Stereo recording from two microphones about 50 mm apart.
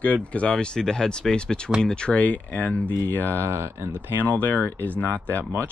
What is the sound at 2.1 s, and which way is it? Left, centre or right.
Speech, left.